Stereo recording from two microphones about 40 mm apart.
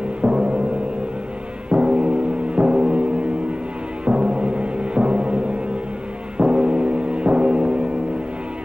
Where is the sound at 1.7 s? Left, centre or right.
Right.